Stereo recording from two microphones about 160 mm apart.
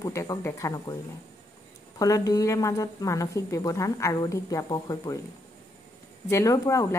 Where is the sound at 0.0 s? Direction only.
20° left (ahead or behind).